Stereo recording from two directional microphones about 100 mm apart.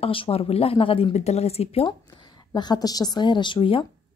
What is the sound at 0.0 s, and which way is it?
Speech, 70° left (ahead or behind).